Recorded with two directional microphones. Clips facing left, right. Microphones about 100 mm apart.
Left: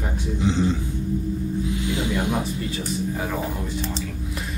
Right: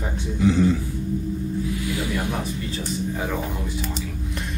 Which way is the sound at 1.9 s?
20° left (ahead or behind).